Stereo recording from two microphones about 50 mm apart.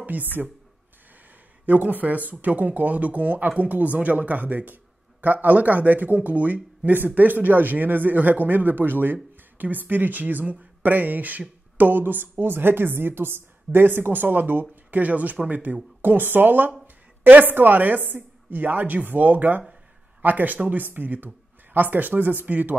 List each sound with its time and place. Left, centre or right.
0.0 s speech: right
1.7 s a woman's voice: right